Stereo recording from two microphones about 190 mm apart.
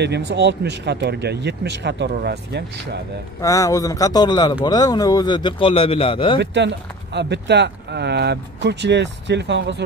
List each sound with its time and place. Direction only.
0.0 s speech: 65° right (ahead or behind)
3.3 s speech: 15° left (ahead or behind)
6.4 s speech: 65° right (ahead or behind)